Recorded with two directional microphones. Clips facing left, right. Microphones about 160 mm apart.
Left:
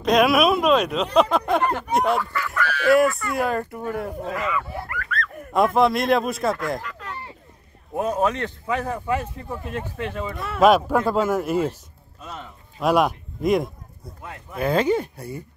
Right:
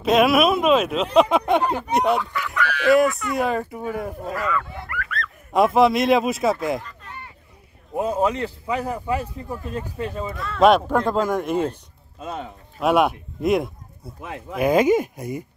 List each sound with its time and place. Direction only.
0.0 s speech: centre (ahead or behind)
2.6 s goose: 15° right (ahead or behind)
2.9 s speech: centre (ahead or behind)
4.4 s speech: 15° left (ahead or behind)
4.9 s a sound: 35° left (ahead or behind)
5.5 s speech: centre (ahead or behind)
6.8 s a sound: 90° left
7.9 s speech: 10° right (ahead or behind)
9.9 s speech: 35° right (ahead or behind)
10.3 s speech: 20° left (ahead or behind)
10.6 s speech: 5° left (ahead or behind)
12.7 s a sound: centre (ahead or behind)
14.2 s speech: 90° right
14.6 s speech: 10° right (ahead or behind)